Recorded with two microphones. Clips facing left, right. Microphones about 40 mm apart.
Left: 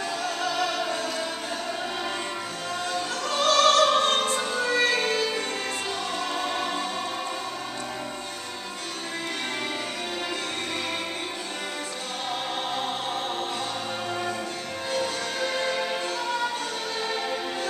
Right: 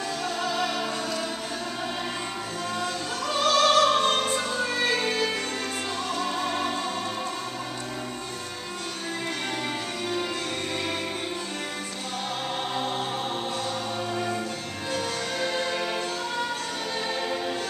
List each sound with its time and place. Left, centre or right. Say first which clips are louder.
0.2 s music: even; centre
3.3 s opera: left 1 dB; centre
6.1 s music: right 1 dB; centre
14.9 s music: left 1 dB; centre